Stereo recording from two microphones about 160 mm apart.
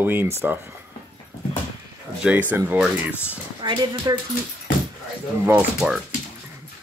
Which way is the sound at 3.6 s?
25° right (ahead or behind).